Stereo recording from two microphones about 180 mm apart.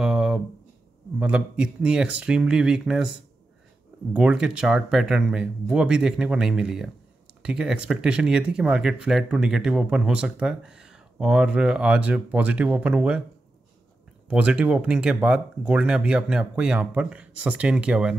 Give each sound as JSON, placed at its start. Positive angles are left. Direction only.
{"t": 0.0, "sound": "a sound", "side_deg": 0}
{"t": 1.2, "sound": "speech", "side_deg": -5}
{"t": 4.1, "sound": "speech", "side_deg": -10}
{"t": 14.2, "sound": "speech", "side_deg": -5}